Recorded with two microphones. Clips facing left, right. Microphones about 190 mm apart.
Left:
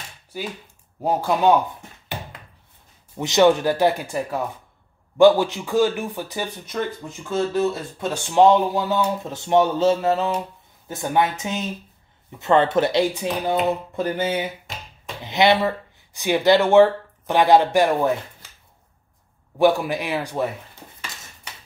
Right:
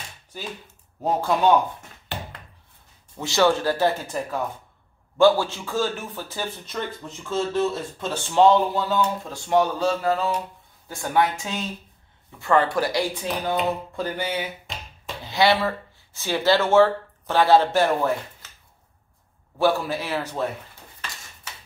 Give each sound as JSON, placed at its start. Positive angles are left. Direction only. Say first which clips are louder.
{"t": 1.0, "sound": "a man's voice", "louder": "left 1 dB", "side_deg": 10}
{"t": 3.2, "sound": "a man's voice", "louder": "left 4 dB", "side_deg": 20}
{"t": 19.6, "sound": "a man's voice", "louder": "left 4 dB", "side_deg": 15}